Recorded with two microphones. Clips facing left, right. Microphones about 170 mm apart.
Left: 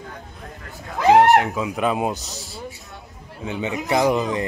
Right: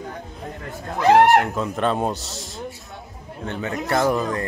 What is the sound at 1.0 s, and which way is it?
Speech, centre (ahead or behind).